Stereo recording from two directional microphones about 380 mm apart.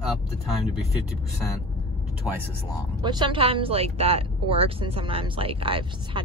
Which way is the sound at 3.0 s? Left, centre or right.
Centre.